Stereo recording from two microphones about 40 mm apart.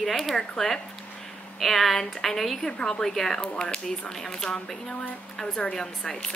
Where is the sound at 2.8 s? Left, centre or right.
Centre.